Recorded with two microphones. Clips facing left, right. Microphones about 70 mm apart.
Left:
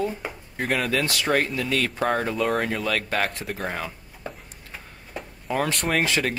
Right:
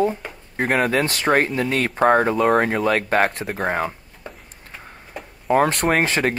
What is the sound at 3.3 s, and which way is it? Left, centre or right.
Speech, right.